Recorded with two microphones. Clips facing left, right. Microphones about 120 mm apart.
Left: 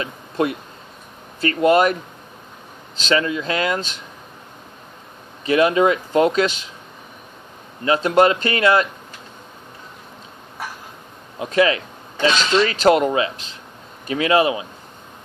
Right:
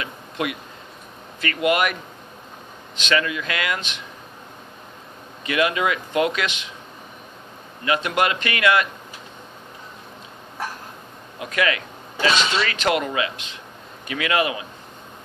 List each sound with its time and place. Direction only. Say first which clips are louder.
0.0 s speech: left 6 dB; 35° left (ahead or behind)
3.0 s speech: left 3 dB; 30° left (ahead or behind)
5.4 s speech: left 6 dB; 35° left (ahead or behind)
7.8 s speech: left 6 dB; 35° left (ahead or behind)
11.3 s speech: left 6 dB; 30° left (ahead or behind)